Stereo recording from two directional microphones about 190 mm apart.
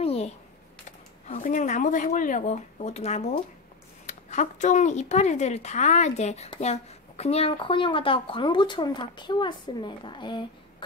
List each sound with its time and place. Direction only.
0.0 s computer keyboard: 30° left (ahead or behind)
0.8 s speech: 40° left (ahead or behind); by 10.4 s 25° left (ahead or behind)